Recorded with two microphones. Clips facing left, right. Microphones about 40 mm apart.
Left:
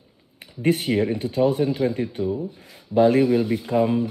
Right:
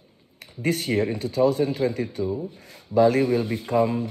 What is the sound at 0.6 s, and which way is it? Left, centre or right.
Speech, left.